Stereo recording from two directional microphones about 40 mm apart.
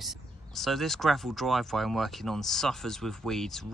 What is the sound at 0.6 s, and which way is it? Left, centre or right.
Speech, centre.